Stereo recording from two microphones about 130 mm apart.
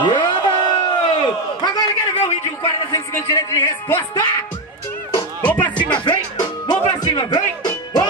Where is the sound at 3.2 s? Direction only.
20° left (ahead or behind).